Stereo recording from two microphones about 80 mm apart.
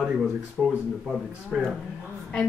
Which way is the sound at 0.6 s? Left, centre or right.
Centre.